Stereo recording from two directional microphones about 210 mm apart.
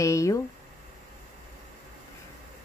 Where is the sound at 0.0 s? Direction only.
15° left (ahead or behind).